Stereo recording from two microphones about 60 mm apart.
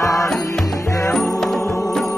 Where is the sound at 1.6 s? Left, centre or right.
Left.